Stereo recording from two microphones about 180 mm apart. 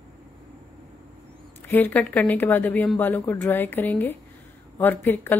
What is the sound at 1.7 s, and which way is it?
Speech, 10° left (ahead or behind).